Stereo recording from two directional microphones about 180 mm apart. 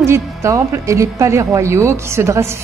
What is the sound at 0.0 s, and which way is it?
A woman's voice, 15° right (ahead or behind).